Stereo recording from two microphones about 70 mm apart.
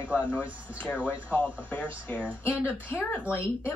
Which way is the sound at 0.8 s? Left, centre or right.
Left.